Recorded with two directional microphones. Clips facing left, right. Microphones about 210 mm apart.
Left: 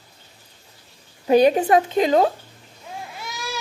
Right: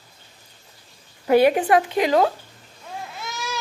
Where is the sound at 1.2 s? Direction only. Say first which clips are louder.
Left 1 dB; 20° left (ahead or behind).